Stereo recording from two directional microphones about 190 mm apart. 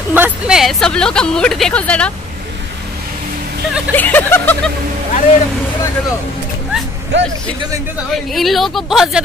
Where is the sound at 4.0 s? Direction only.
10° left (ahead or behind).